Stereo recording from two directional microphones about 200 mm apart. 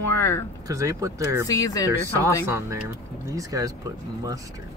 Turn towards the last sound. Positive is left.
turn(degrees=-15)  # may be behind; listen again after turning